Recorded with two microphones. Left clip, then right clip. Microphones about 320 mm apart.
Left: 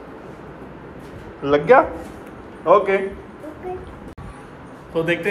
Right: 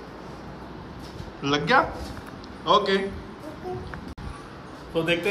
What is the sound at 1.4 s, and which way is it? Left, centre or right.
Speech, centre.